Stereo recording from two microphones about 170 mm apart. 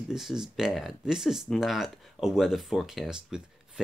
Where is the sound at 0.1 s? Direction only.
5° right (ahead or behind).